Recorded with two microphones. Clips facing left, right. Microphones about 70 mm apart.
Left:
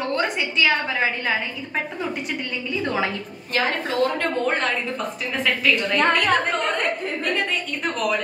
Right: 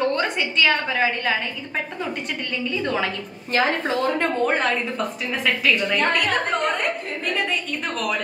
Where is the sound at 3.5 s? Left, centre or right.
Right.